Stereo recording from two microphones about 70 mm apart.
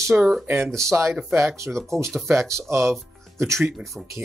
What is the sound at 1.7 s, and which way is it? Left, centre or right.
Speech, centre.